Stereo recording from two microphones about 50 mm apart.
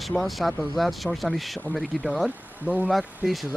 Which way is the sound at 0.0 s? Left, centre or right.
Centre.